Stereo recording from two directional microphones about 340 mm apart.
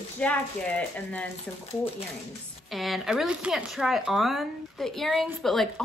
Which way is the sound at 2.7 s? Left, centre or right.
Centre.